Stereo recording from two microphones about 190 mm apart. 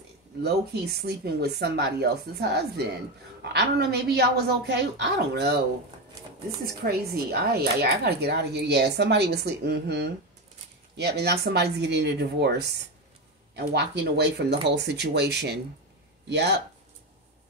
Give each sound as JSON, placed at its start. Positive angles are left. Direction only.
{"t": 1.0, "sound": "speech", "side_deg": -60}
{"t": 6.6, "sound": "speech", "side_deg": -55}